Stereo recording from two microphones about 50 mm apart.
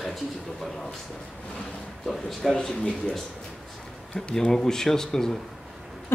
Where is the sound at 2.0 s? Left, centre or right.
Centre.